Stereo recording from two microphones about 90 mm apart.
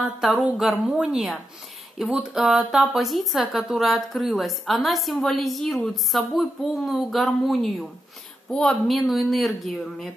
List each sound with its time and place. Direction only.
0.6 s a woman's voice: centre (ahead or behind)